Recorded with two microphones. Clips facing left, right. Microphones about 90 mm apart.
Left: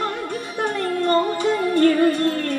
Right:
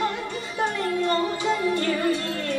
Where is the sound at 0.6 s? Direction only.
55° left (ahead or behind).